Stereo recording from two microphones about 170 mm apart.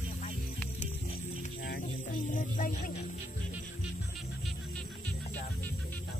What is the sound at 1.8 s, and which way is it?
Speech, 50° left (ahead or behind).